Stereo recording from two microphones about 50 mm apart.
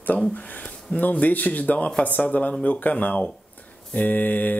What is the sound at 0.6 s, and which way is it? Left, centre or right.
Speech, left.